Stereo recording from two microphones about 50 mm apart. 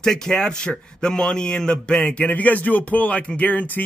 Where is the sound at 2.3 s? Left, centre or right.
Left.